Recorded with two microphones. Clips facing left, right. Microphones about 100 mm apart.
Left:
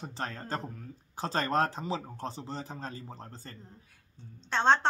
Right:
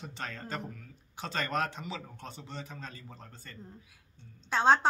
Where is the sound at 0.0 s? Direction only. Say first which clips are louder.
Left 3 dB; 35° left (ahead or behind).